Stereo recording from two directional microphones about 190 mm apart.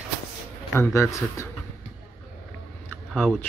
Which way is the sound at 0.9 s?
15° left (ahead or behind).